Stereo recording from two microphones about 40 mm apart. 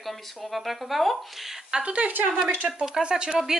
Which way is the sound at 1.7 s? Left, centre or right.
Right.